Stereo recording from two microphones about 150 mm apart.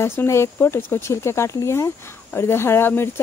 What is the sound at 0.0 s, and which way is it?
Speech, 15° left (ahead or behind).